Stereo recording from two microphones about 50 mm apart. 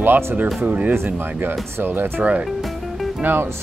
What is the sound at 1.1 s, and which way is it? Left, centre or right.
Speech, right.